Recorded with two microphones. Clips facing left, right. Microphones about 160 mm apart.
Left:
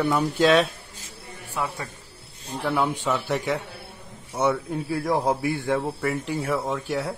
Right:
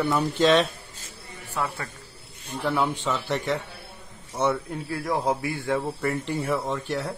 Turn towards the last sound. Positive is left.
turn(degrees=5)  # may be behind; listen again after turning